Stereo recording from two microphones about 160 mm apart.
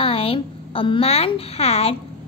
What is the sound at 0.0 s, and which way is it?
A woman's voice, 35° left (ahead or behind).